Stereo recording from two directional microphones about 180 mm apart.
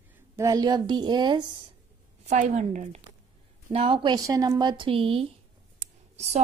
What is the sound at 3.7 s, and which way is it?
Speech, 30° right (ahead or behind).